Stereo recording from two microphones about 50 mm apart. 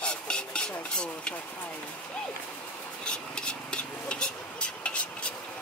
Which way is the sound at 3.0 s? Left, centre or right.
Centre.